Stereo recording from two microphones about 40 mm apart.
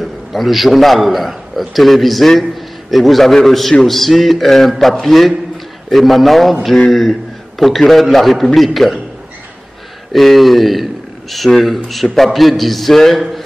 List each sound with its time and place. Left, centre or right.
0.0 s a man's voice: centre
10.1 s a man's voice: centre